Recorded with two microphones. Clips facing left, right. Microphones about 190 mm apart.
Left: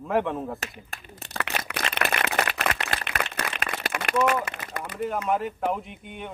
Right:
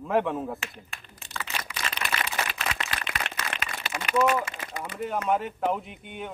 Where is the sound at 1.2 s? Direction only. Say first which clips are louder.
Left 5 dB; 65° left (ahead or behind).